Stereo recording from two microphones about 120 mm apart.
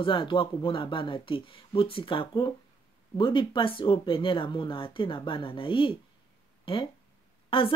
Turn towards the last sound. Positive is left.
turn(degrees=50)  # may be behind; listen again after turning